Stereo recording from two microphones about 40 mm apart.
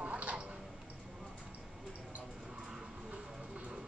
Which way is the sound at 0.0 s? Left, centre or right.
Right.